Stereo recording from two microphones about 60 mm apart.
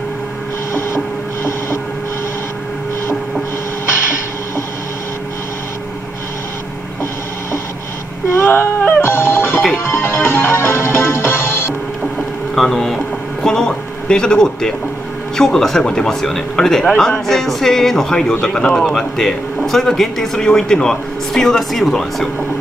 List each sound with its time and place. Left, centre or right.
0.7 s printer: left
8.4 s music: left
12.5 s a man's voice: centre